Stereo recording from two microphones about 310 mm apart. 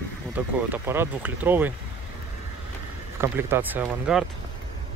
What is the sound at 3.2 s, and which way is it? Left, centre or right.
Speech, centre.